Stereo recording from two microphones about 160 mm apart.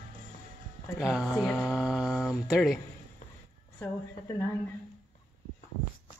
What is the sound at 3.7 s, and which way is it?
Speech, 15° left (ahead or behind).